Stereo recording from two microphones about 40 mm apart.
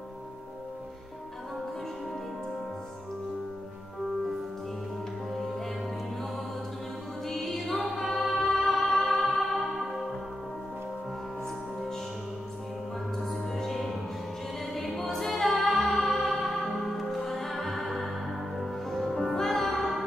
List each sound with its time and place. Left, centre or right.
7.2 s music: centre
13.2 s music: centre
14.7 s choir: centre
15.4 s music: centre